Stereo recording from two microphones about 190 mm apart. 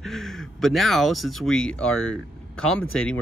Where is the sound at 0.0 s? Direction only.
Centre (ahead or behind).